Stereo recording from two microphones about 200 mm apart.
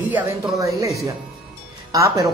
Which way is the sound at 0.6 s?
15° right (ahead or behind).